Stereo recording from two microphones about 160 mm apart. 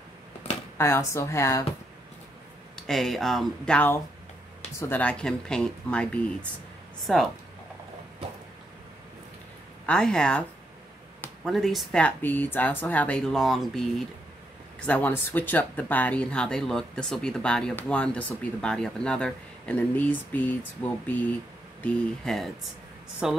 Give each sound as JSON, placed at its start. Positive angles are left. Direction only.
{"t": 0.7, "sound": "speech", "side_deg": 15}
{"t": 2.7, "sound": "speech", "side_deg": 0}
{"t": 9.8, "sound": "speech", "side_deg": 5}
{"t": 11.4, "sound": "speech", "side_deg": 0}